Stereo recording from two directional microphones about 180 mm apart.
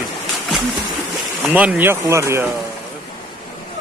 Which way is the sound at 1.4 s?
5° right (ahead or behind).